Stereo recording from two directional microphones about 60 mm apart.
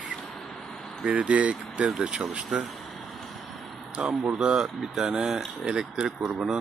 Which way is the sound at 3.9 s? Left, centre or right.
Centre.